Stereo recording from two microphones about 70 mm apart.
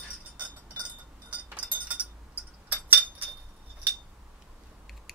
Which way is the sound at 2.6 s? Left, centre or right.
Right.